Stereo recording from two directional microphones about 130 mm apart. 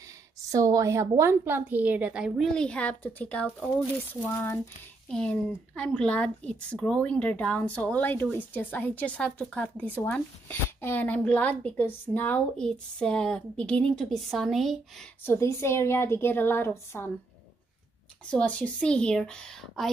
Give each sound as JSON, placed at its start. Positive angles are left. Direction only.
{"t": 0.5, "sound": "a woman's voice", "side_deg": -25}
{"t": 15.2, "sound": "a woman's voice", "side_deg": 20}
{"t": 18.2, "sound": "speech", "side_deg": 10}